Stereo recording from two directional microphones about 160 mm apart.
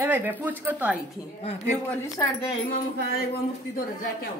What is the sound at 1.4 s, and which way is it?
Speech, 40° left (ahead or behind).